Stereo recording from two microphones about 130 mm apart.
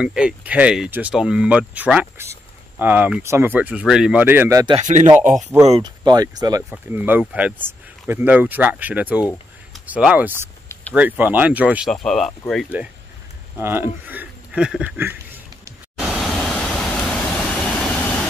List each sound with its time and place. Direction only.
0.0 s speech: 5° right (ahead or behind)
4.7 s speech: 70° right (ahead or behind)
5.8 s speech: 35° right (ahead or behind)
6.9 s speech: 15° right (ahead or behind)
11.9 s speech: 5° left (ahead or behind)
13.6 s speech: 15° right (ahead or behind)
15.0 s a sound: 15° right (ahead or behind)
16.1 s vehicle: centre (ahead or behind)